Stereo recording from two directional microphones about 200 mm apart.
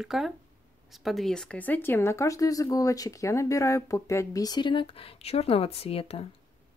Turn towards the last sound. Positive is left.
turn(degrees=30)  # may be behind; listen again after turning